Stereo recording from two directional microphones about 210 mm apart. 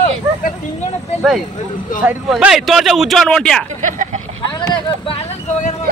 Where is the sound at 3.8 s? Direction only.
35° right (ahead or behind).